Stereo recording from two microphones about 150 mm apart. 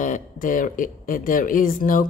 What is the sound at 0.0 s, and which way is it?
A woman's voice, 60° left (ahead or behind).